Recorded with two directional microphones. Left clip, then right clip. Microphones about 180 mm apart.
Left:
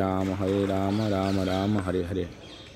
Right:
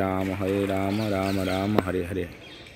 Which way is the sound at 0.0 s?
Centre (ahead or behind).